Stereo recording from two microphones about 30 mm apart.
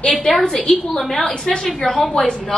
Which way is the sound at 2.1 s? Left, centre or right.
Left.